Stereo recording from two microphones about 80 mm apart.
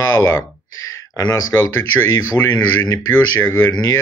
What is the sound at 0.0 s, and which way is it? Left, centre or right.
Speech, left.